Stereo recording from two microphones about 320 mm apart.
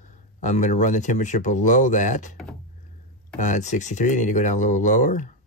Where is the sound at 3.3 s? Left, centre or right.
Left.